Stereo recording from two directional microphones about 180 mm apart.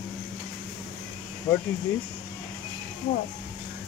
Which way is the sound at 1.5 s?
20° left (ahead or behind).